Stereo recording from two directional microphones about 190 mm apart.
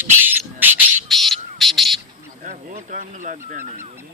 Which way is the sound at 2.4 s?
40° right (ahead or behind).